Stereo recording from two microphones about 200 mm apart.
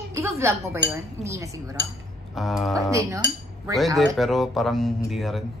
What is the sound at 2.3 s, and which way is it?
Speech, centre (ahead or behind).